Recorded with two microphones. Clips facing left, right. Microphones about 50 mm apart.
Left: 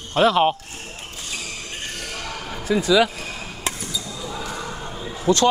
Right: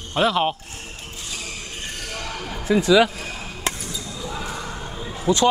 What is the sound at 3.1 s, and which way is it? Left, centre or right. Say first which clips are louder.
Chop: even; centre.